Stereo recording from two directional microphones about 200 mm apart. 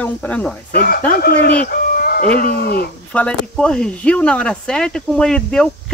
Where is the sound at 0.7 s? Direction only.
45° left (ahead or behind).